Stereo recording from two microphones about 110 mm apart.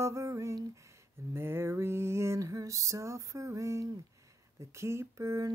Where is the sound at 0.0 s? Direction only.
30° right (ahead or behind).